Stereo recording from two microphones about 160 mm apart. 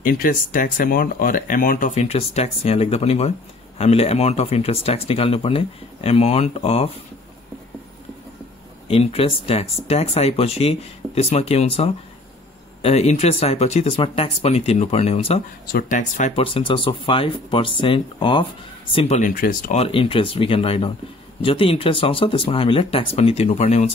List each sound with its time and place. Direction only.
0.0 s speech: 60° left (ahead or behind); by 6.9 s 40° left (ahead or behind)
8.8 s speech: 40° left (ahead or behind)
15.6 s speech: 70° left (ahead or behind)
16.0 s speech: 50° left (ahead or behind)
16.4 s speech: 30° left (ahead or behind)
19.1 s speech: 60° left (ahead or behind)
19.7 s speech: 35° left (ahead or behind)